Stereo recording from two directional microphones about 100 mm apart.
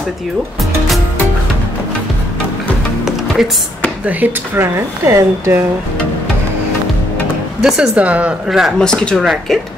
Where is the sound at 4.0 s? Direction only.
15° right (ahead or behind).